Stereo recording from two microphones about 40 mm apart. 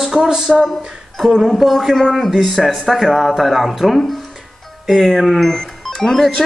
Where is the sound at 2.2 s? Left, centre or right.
Centre.